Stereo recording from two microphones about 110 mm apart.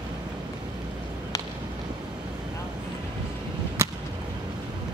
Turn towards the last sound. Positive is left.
turn(degrees=-25)  # may be behind; listen again after turning